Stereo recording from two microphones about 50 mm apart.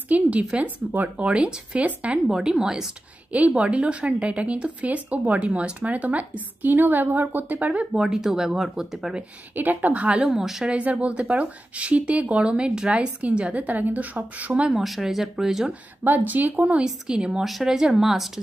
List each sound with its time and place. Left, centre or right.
0.1 s speech: right
2.2 s speech: centre
3.3 s a woman's voice: right
8.0 s speech: centre
9.6 s a woman's voice: right
10.0 s speech: right
10.3 s speech: centre
10.6 s speech: right
14.7 s speech: centre
16.0 s a woman's voice: right
16.8 s speech: centre
17.4 s speech: centre
17.6 s speech: centre